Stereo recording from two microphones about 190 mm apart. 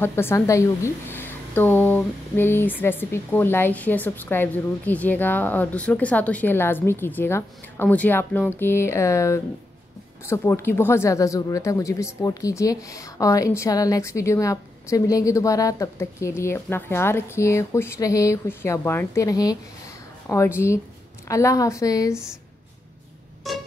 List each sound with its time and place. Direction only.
0.0 s a woman's voice: 10° left (ahead or behind)
23.5 s music: centre (ahead or behind)